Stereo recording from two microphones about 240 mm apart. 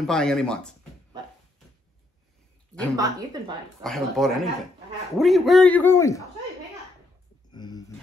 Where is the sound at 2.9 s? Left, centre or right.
Centre.